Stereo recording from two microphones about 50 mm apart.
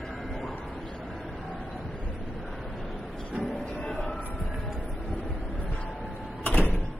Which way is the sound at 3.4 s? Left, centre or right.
Centre.